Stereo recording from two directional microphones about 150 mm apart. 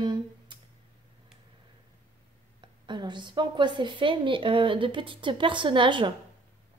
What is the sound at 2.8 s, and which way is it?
A woman's voice, 30° right (ahead or behind).